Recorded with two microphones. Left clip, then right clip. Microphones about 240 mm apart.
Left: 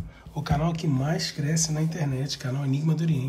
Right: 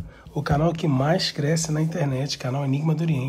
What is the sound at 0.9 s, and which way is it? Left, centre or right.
Speech, right.